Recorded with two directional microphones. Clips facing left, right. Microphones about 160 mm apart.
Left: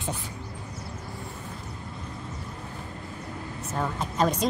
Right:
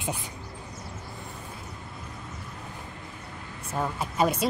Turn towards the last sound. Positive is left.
turn(degrees=-10)  # may be behind; listen again after turning